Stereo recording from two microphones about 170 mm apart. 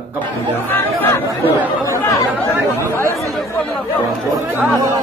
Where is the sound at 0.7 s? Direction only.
10° left (ahead or behind).